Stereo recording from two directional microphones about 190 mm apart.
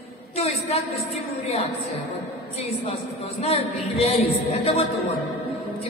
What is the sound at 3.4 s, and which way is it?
Speech, 30° left (ahead or behind).